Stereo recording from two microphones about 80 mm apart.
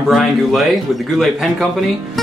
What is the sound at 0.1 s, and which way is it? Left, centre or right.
A man's voice, centre.